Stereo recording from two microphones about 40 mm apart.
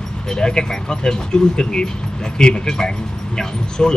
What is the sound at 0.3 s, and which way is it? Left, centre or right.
Speech, centre.